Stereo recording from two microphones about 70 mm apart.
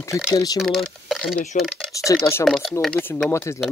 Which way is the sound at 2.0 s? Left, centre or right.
Left.